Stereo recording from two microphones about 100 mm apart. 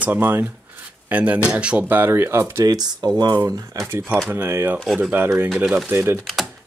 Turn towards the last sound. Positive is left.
turn(degrees=0)  # may be behind; listen again after turning